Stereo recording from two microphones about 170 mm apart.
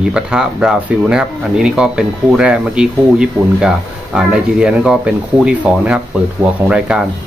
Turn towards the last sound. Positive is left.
turn(degrees=-5)  # may be behind; listen again after turning